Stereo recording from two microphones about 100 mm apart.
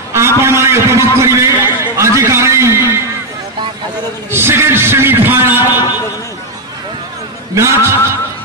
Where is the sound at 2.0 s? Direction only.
30° right (ahead or behind).